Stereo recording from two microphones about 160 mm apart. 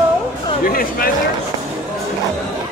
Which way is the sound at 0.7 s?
65° left (ahead or behind).